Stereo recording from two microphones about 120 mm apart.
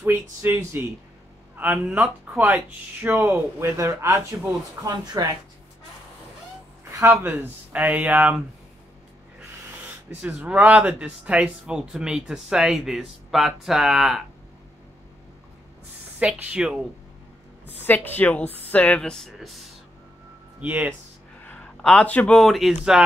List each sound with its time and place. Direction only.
0.0 s speech: 15° right (ahead or behind); by 5.2 s 35° right (ahead or behind)
6.8 s speech: 25° right (ahead or behind)
10.2 s speech: 10° right (ahead or behind)
16.2 s speech: 10° right (ahead or behind)
17.8 s speech: 15° left (ahead or behind)
20.6 s speech: 15° right (ahead or behind)
21.5 s a sound: 10° left (ahead or behind)
22.4 s speech: centre (ahead or behind)